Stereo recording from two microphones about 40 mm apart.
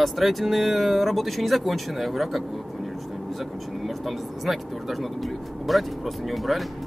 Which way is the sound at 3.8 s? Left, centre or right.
Centre.